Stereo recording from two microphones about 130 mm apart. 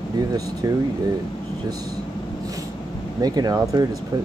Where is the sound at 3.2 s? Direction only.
30° right (ahead or behind).